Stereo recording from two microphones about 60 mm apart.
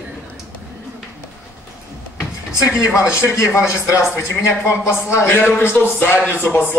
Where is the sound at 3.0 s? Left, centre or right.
Left.